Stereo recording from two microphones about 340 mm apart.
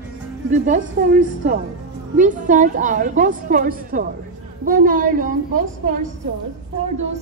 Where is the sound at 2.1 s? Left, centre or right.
Right.